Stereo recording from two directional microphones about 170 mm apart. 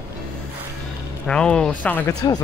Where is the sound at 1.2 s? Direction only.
5° left (ahead or behind).